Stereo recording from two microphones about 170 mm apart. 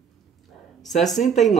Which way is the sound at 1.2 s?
50° left (ahead or behind).